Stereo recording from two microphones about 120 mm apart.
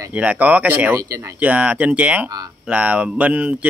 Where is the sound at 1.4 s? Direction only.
10° right (ahead or behind).